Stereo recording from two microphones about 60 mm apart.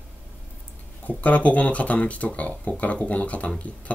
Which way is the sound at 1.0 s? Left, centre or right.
Left.